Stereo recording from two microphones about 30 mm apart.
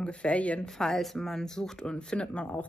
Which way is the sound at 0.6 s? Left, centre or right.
Centre.